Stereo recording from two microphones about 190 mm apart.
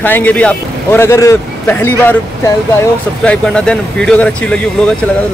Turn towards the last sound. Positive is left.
turn(degrees=5)  # may be behind; listen again after turning